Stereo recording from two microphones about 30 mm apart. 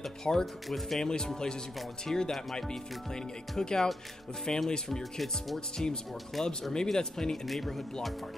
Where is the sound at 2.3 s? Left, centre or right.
Centre.